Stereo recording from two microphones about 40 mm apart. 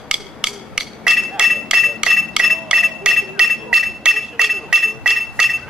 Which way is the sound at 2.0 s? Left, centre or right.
Right.